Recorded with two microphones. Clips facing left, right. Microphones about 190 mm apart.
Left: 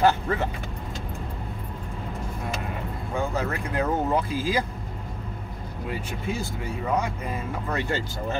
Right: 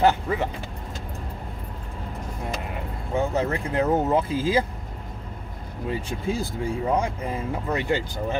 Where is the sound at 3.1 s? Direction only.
25° right (ahead or behind).